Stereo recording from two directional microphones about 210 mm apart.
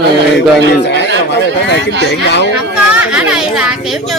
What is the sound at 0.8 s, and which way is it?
A man's voice, 55° left (ahead or behind).